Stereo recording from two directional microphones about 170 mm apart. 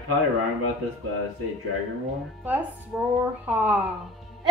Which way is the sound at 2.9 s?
10° right (ahead or behind).